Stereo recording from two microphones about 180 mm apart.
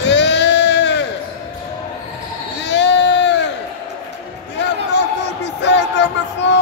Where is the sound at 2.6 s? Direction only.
80° left.